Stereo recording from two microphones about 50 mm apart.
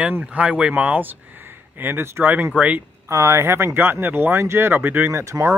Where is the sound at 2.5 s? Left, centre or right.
Right.